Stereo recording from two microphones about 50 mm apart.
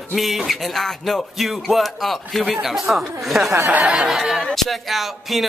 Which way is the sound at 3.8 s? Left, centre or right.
Right.